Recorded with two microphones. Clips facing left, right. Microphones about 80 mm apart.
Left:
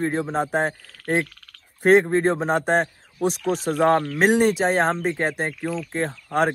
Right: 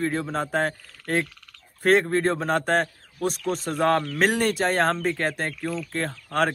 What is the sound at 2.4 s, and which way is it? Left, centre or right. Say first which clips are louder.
Speech: left 2 dB; centre.